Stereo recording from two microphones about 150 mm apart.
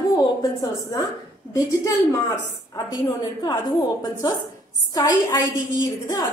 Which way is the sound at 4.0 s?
25° left (ahead or behind).